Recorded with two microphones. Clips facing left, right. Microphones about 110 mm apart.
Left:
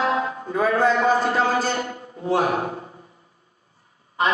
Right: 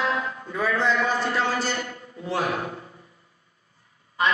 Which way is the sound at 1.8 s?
30° left (ahead or behind).